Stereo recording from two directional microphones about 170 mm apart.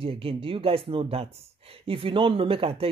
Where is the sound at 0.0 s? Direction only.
35° right (ahead or behind).